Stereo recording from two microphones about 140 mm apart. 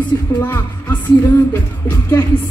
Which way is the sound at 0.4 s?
15° left (ahead or behind).